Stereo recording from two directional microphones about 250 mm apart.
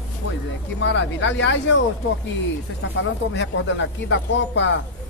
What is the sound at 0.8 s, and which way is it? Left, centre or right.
Speech, left.